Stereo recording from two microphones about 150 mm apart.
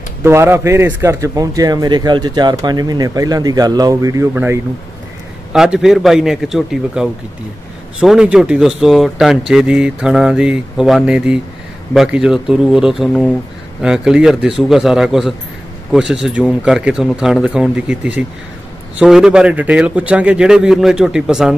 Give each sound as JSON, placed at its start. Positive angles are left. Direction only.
{"t": 0.2, "sound": "a man's voice", "side_deg": -15}